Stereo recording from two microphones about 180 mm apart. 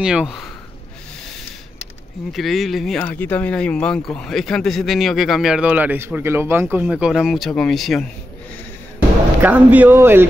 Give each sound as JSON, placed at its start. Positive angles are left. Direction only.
{"t": 0.0, "sound": "speech", "side_deg": -5}
{"t": 2.3, "sound": "speech", "side_deg": 0}
{"t": 9.4, "sound": "speech", "side_deg": -10}